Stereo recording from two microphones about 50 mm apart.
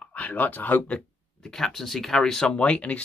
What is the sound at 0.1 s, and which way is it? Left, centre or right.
Speech, left.